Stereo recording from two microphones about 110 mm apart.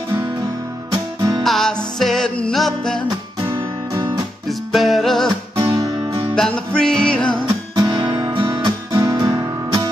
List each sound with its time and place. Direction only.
0.9 s music: 30° right (ahead or behind)
1.4 s music: 5° left (ahead or behind)
4.5 s music: centre (ahead or behind)
6.3 s music: 10° left (ahead or behind)
7.7 s guitar: 40° right (ahead or behind)
8.5 s guitar: 35° right (ahead or behind)